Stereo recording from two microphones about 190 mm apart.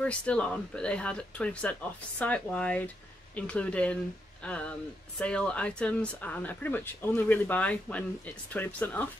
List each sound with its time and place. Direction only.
0.0 s speech: 5° left (ahead or behind)